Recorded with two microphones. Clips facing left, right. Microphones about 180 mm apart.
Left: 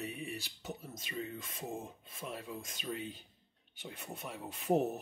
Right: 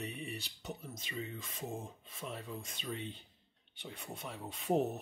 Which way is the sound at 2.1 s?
5° left (ahead or behind).